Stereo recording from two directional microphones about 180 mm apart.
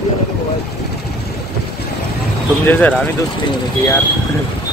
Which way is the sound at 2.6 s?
10° left (ahead or behind).